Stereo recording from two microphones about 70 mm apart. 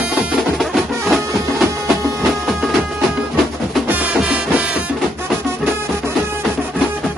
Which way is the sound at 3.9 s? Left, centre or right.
Centre.